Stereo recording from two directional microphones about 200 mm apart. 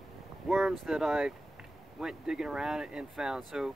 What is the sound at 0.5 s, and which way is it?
Speech, centre (ahead or behind).